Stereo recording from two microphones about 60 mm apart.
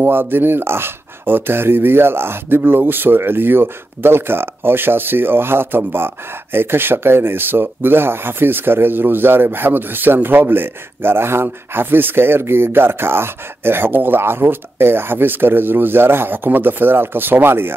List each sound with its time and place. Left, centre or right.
0.0 s speech: right